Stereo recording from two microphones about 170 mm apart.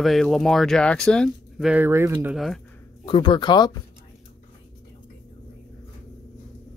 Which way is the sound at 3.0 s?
30° left (ahead or behind).